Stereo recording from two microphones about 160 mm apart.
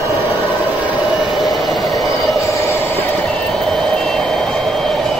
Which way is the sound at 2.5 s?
20° left (ahead or behind).